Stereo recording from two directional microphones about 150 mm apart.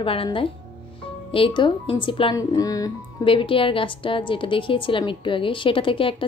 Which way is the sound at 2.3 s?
25° left (ahead or behind).